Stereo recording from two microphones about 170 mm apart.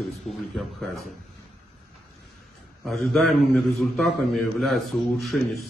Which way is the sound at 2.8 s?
Centre (ahead or behind).